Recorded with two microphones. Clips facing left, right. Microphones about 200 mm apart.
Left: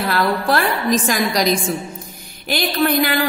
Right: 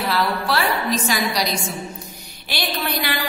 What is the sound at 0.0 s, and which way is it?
A woman's voice, 50° left (ahead or behind).